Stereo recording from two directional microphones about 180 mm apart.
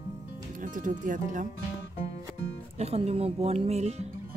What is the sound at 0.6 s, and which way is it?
Speech, 45° right (ahead or behind).